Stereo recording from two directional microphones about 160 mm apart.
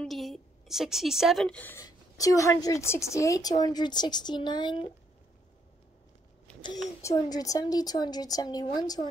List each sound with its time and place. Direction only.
0.0 s a sound: centre (ahead or behind)
1.9 s a woman's voice: 20° left (ahead or behind)
7.0 s a woman's voice: 20° left (ahead or behind)